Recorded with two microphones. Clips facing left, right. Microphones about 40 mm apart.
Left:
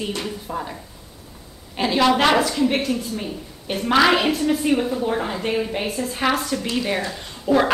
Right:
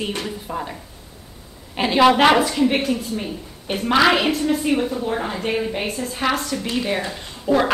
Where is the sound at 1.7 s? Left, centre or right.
Centre.